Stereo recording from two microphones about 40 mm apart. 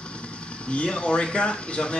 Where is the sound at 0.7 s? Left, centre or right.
Left.